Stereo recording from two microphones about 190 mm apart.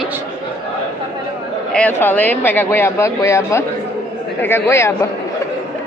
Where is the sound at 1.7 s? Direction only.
10° left (ahead or behind).